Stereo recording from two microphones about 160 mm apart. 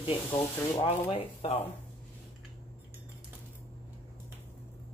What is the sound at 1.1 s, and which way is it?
Speech, 35° left (ahead or behind).